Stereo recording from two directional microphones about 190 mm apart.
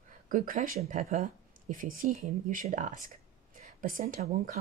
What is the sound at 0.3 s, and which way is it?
Speech, 45° right (ahead or behind).